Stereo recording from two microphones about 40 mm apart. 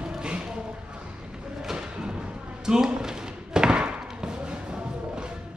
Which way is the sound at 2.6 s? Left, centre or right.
Centre.